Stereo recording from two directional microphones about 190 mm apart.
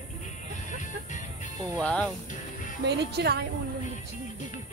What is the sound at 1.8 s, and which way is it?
Speech, 5° left (ahead or behind).